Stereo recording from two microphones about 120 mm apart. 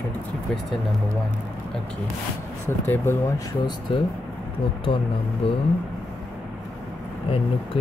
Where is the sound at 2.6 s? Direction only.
20° left (ahead or behind).